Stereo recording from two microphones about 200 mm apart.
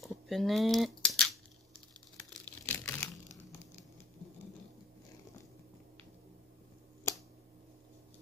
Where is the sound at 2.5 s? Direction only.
10° left (ahead or behind).